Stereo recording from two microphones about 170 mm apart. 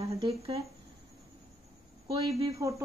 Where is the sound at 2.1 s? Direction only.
20° right (ahead or behind).